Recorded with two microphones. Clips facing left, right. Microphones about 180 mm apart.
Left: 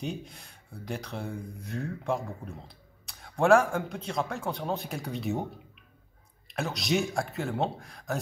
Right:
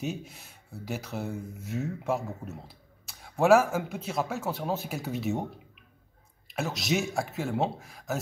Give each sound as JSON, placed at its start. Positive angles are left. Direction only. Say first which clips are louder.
{"t": 0.0, "sound": "speech", "louder": "right 1 dB", "side_deg": -5}